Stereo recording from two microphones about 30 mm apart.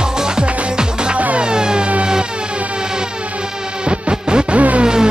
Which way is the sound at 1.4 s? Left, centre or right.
Right.